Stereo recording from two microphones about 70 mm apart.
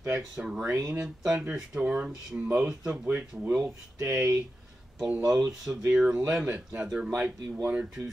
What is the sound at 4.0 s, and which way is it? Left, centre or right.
Speech, centre.